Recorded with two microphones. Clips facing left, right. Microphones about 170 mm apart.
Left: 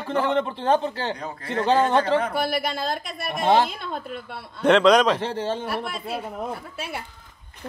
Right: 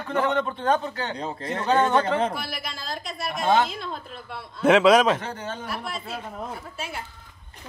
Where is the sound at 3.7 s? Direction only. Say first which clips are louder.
Left 3 dB; 55° left (ahead or behind).